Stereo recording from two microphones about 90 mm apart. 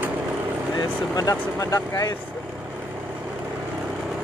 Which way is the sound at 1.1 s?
40° left (ahead or behind).